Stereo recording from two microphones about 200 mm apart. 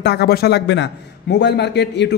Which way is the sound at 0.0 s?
55° left (ahead or behind).